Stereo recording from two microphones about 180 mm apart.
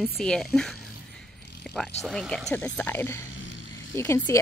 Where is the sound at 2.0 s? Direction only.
Centre (ahead or behind).